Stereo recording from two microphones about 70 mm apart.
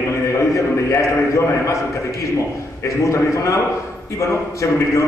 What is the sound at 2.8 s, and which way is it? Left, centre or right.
Speech, left.